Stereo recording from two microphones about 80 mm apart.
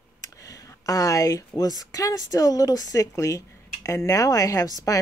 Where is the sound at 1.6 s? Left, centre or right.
Left.